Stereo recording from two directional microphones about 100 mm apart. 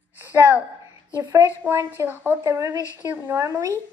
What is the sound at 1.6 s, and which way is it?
Speech, 25° right (ahead or behind).